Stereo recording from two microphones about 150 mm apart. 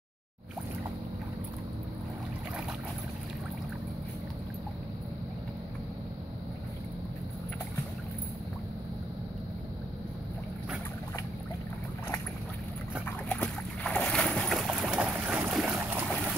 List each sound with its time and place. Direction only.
13.3 s boat: 10° left (ahead or behind)